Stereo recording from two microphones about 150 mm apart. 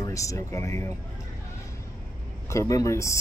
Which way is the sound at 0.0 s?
20° left (ahead or behind).